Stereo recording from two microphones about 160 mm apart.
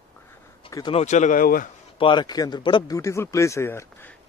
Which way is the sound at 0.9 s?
45° left (ahead or behind).